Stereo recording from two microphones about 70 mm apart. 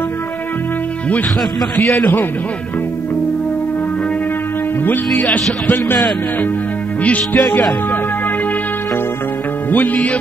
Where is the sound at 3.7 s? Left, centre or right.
Left.